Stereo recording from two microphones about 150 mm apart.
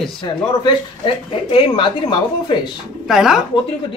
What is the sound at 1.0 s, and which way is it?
Speech, 35° left (ahead or behind).